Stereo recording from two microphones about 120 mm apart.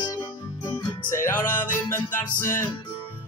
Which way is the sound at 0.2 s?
40° left (ahead or behind).